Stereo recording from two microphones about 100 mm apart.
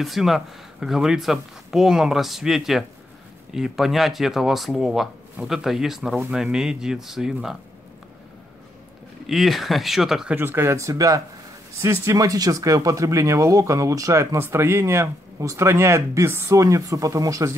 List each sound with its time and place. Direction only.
0.0 s speech: centre (ahead or behind)
9.2 s speech: centre (ahead or behind)
10.3 s speech: 20° right (ahead or behind)